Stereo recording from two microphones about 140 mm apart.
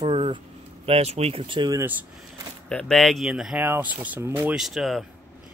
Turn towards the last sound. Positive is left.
turn(degrees=0)  # may be behind; listen again after turning